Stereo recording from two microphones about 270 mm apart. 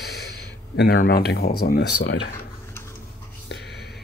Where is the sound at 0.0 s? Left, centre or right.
Left.